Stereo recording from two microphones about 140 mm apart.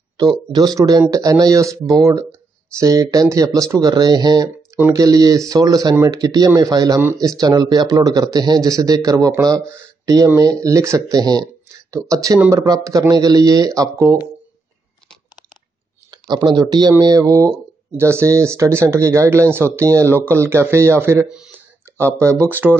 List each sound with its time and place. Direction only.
0.2 s speech: 30° right (ahead or behind)
4.7 s speech: 20° right (ahead or behind)
16.1 s speech: 30° right (ahead or behind); by 22.8 s 15° right (ahead or behind)